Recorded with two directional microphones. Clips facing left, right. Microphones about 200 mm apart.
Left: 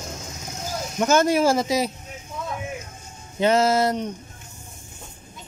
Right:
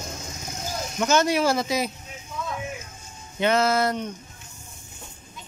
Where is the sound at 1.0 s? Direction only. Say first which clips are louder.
Left 3 dB; 50° left (ahead or behind).